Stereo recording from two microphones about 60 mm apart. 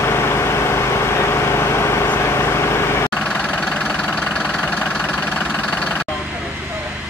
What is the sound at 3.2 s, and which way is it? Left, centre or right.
Engine, centre.